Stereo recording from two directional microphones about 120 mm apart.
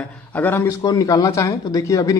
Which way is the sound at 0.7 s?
30° left (ahead or behind).